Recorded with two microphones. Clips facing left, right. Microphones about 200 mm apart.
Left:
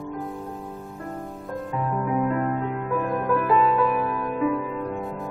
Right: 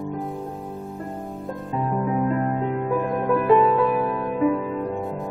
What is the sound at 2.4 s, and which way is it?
Music, 25° right (ahead or behind).